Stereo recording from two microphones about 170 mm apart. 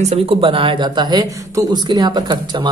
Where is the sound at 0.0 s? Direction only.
35° right (ahead or behind).